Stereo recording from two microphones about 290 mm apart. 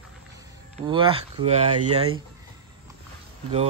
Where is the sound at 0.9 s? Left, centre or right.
Centre.